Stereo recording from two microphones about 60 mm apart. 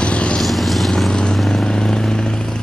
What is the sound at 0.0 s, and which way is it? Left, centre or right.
Vehicle, centre.